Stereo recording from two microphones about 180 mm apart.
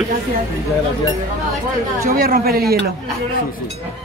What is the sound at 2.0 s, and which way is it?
Speech, 55° right (ahead or behind).